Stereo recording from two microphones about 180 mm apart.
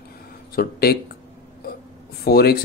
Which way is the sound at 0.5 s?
60° left (ahead or behind).